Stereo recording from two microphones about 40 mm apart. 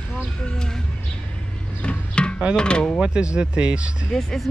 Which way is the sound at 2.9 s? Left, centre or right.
Right.